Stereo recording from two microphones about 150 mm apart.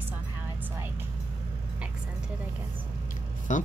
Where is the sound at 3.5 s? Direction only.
55° left (ahead or behind).